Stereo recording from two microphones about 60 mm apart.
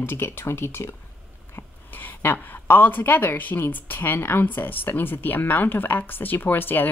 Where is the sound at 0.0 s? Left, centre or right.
Left.